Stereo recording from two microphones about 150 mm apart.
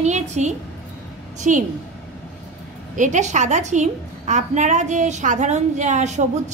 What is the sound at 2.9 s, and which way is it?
A woman's voice, 55° right (ahead or behind).